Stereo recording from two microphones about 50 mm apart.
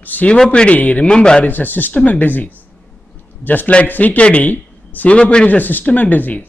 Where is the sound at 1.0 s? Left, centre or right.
Centre.